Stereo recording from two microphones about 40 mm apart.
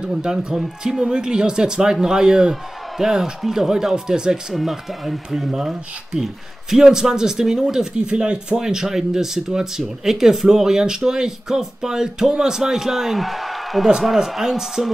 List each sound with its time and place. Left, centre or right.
0.0 s speech: centre
0.6 s speech: centre
1.0 s speech: centre
4.6 s speech: centre